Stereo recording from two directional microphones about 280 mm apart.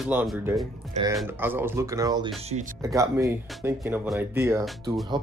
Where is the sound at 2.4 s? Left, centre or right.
Right.